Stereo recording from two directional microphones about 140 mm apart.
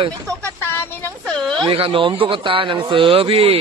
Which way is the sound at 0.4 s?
15° left (ahead or behind).